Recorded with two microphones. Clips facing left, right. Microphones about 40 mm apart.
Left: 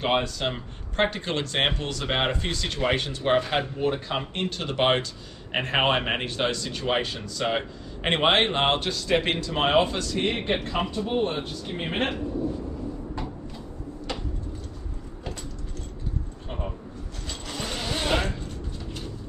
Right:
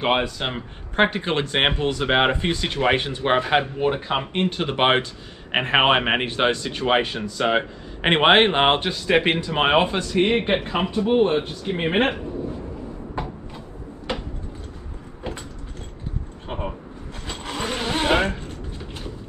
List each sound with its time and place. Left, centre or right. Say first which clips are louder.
0.0 s a man's voice: right 3 dB; right
16.4 s vehicle: right 7 dB; right